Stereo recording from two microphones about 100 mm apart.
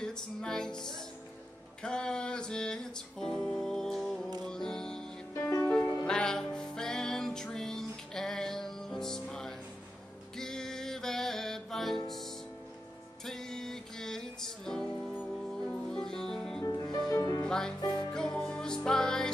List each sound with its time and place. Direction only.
0.0 s music: 5° left (ahead or behind)
5.3 s music: 30° left (ahead or behind)
6.0 s music: 5° left (ahead or behind)
13.2 s music: 5° left (ahead or behind)
16.6 s music: 35° left (ahead or behind)
17.5 s music: 5° left (ahead or behind)